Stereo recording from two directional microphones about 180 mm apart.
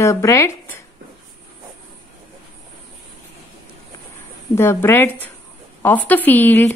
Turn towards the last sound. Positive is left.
turn(degrees=10)  # may be behind; listen again after turning